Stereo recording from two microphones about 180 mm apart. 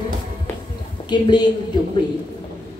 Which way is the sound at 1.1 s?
25° left (ahead or behind).